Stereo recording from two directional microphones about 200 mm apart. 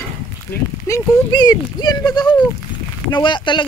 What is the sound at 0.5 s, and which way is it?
Speech, 50° left (ahead or behind).